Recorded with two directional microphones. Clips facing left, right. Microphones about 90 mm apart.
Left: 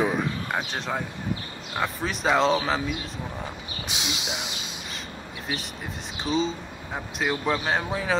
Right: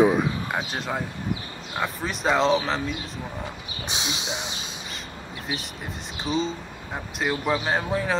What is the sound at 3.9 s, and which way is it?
Speech, 25° right (ahead or behind).